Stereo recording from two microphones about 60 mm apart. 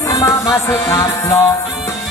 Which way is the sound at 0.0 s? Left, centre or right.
Left.